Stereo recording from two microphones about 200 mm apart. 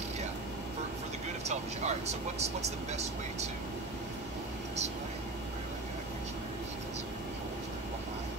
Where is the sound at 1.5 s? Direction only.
35° right (ahead or behind).